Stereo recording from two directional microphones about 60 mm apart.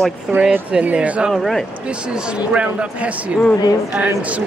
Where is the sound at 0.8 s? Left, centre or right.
Right.